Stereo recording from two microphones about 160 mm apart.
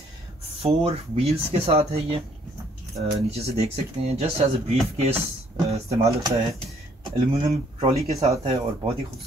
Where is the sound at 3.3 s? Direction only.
40° right (ahead or behind).